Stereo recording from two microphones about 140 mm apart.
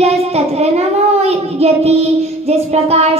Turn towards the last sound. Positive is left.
turn(degrees=-50)  # may be behind; listen again after turning